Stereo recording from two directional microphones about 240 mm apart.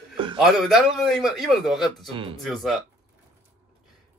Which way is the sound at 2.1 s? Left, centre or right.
Right.